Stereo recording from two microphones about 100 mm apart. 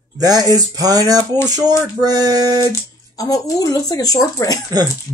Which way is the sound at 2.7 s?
35° left (ahead or behind).